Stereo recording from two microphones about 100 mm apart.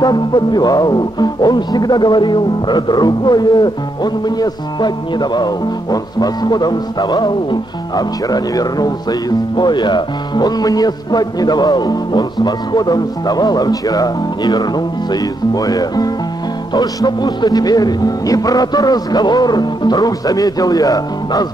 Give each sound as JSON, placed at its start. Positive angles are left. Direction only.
{"t": 0.0, "sound": "speech", "side_deg": 45}
{"t": 16.7, "sound": "music", "side_deg": 45}